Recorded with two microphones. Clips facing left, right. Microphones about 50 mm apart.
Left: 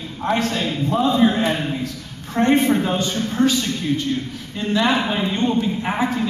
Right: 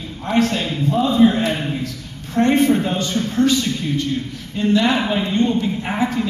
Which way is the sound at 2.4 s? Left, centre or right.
Centre.